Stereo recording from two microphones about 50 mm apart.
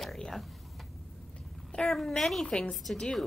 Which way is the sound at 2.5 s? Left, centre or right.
Left.